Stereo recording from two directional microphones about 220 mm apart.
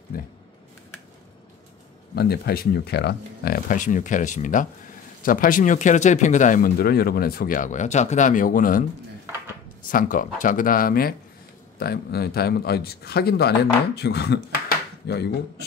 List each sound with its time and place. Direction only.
2.1 s speech: 45° left (ahead or behind)
9.8 s speech: 40° left (ahead or behind)